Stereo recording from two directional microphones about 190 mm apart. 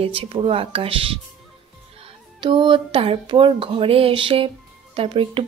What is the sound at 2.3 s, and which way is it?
A woman's voice, 25° right (ahead or behind).